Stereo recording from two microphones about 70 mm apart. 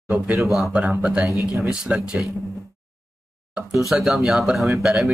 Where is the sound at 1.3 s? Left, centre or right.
Right.